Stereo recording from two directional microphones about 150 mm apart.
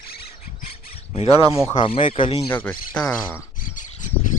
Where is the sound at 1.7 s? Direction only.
40° left (ahead or behind).